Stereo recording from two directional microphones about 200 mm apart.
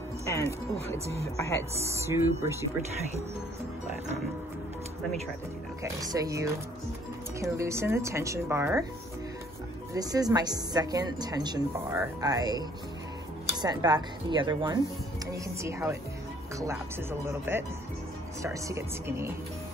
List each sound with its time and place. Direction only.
0.7 s speech: 30° right (ahead or behind)
1.1 s speech: 15° left (ahead or behind)
1.8 s speech: 15° right (ahead or behind)
5.9 s speech: 15° right (ahead or behind)
9.9 s speech: 20° right (ahead or behind)
17.3 s speech: 10° right (ahead or behind)